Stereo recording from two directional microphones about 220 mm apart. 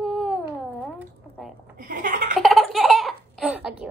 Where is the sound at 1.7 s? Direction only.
40° right (ahead or behind).